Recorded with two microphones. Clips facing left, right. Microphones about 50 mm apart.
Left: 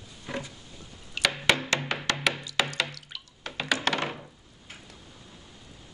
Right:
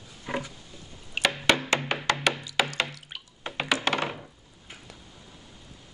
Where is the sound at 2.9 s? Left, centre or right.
Right.